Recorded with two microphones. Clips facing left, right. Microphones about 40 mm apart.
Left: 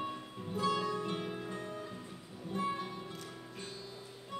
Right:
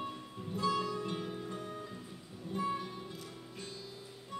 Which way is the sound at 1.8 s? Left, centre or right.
Centre.